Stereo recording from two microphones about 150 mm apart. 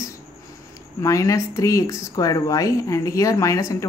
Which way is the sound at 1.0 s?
20° left (ahead or behind).